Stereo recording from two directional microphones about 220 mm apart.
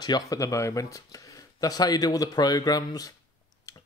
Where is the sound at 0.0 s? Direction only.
15° left (ahead or behind).